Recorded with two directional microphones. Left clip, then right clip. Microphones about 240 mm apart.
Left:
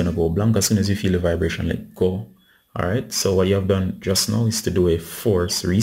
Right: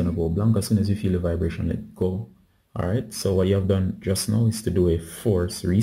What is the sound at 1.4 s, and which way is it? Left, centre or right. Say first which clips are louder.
Speech: left 5 dB; centre.